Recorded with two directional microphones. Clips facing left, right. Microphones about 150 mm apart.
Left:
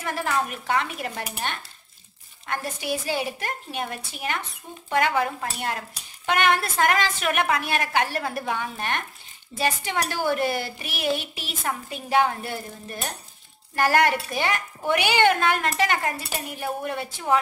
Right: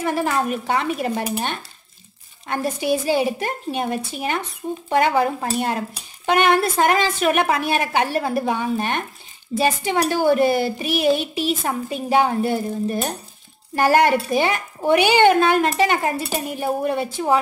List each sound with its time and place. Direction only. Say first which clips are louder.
0.0 s speech: right 5 dB; 25° right (ahead or behind)